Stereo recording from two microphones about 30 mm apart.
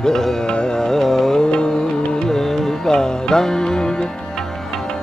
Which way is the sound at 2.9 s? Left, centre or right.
Left.